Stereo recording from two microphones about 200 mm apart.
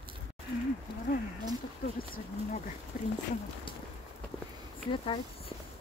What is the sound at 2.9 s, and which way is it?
Speech, 45° left (ahead or behind).